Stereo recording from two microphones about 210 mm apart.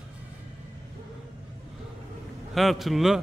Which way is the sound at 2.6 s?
Centre (ahead or behind).